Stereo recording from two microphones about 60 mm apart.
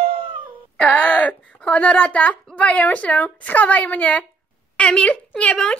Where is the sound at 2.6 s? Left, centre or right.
Left.